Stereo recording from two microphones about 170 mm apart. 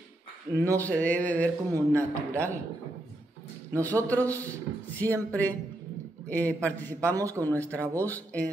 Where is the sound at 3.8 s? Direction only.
10° left (ahead or behind).